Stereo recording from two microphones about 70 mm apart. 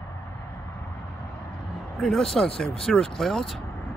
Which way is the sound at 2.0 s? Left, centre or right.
Centre.